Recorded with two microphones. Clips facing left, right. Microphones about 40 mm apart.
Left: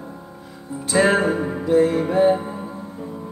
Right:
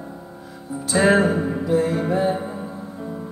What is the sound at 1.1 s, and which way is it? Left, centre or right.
Music, centre.